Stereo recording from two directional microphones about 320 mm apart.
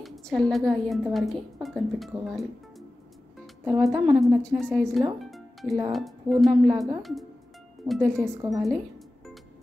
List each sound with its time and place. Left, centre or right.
0.0 s a woman's voice: centre
3.6 s a woman's voice: centre
4.8 s music: centre
5.9 s a woman's voice: centre
7.8 s speech: centre
8.6 s music: centre